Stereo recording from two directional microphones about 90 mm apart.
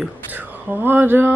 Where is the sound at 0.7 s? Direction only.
25° right (ahead or behind).